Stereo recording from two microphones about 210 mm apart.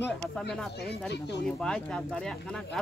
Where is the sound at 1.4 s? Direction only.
5° left (ahead or behind).